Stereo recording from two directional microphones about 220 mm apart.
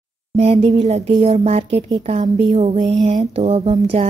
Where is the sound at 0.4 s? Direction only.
25° right (ahead or behind).